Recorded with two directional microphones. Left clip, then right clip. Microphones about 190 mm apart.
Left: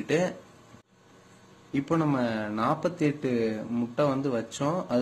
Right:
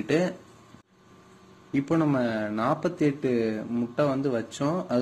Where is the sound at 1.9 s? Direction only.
Centre (ahead or behind).